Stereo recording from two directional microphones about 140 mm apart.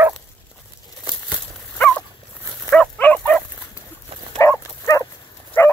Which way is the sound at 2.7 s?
10° left (ahead or behind).